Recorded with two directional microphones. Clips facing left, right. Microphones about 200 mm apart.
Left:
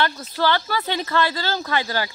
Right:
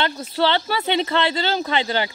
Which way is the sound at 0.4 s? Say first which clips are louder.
Right 1 dB; 25° right (ahead or behind).